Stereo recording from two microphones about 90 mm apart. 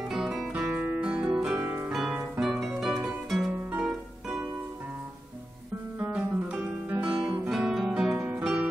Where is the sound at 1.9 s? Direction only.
5° right (ahead or behind).